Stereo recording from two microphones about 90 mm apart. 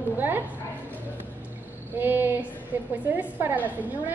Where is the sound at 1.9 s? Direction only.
20° right (ahead or behind).